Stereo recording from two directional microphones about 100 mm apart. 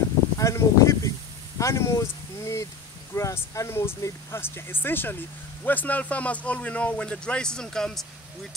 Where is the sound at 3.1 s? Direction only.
30° left (ahead or behind).